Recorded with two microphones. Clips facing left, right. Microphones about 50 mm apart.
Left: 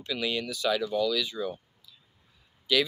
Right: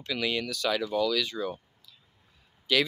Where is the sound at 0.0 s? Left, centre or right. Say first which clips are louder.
Right 1 dB; right.